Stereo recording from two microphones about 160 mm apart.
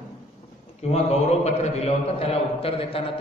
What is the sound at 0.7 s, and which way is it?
A man's voice, 45° left (ahead or behind).